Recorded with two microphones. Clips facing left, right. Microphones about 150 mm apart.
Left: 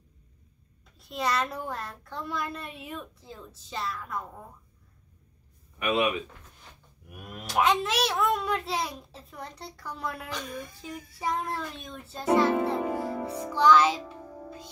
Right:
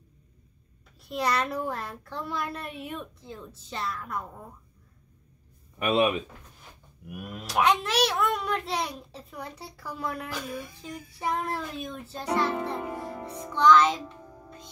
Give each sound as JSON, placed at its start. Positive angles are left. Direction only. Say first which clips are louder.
{"t": 1.0, "sound": "a child's voice", "louder": "right 1 dB", "side_deg": 0}
{"t": 5.8, "sound": "speech", "louder": "right 2 dB", "side_deg": -35}
{"t": 7.1, "sound": "a child's voice", "louder": "right 3 dB", "side_deg": -5}
{"t": 12.6, "sound": "music", "louder": "left 5 dB", "side_deg": 0}